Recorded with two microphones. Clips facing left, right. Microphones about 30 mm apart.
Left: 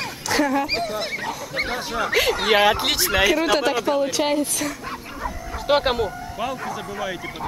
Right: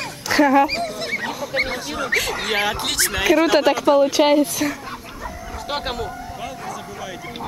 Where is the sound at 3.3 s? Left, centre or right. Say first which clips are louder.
Right 4 dB; centre.